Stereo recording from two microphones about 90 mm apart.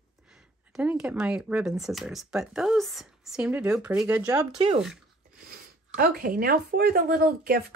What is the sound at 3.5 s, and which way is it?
Speech, 15° right (ahead or behind).